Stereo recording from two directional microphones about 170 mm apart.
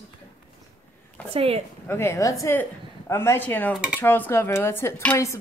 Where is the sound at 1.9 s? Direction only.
15° left (ahead or behind).